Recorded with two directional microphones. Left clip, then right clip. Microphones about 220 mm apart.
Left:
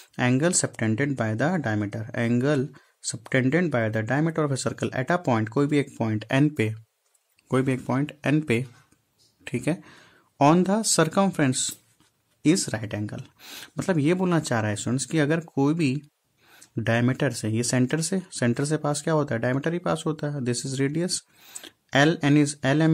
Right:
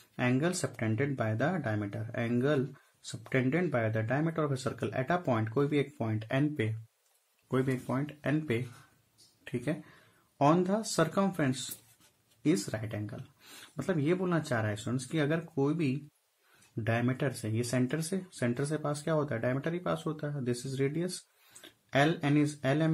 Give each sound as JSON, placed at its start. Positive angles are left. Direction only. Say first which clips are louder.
{"t": 0.1, "sound": "speech", "louder": "left 8 dB", "side_deg": 50}